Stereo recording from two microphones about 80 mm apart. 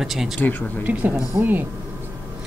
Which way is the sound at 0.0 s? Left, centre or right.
Centre.